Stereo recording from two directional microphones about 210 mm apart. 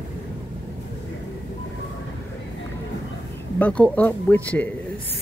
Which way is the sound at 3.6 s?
5° left (ahead or behind).